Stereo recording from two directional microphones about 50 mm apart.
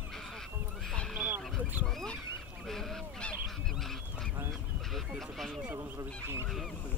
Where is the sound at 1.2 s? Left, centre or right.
Right.